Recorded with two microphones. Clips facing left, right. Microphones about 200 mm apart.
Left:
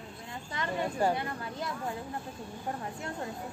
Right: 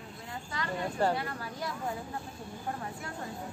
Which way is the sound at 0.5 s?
20° left (ahead or behind).